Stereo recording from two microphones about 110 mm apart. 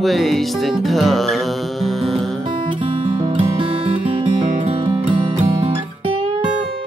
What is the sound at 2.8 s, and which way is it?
Music, 55° right (ahead or behind).